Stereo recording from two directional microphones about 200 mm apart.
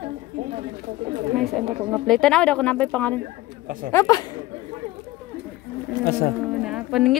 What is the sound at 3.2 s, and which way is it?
Speech, 45° right (ahead or behind).